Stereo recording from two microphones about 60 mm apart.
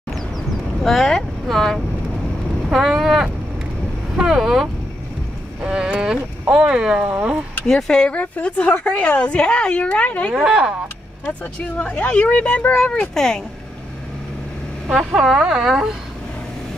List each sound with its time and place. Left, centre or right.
0.8 s speech: centre
5.6 s a sound: centre
6.5 s speech: centre
7.2 s a sound: right
7.6 s a woman's voice: centre
8.1 s a woman's voice: left
10.3 s speech: centre
11.8 s a woman's voice: left
12.7 s a woman's voice: centre
15.1 s speech: centre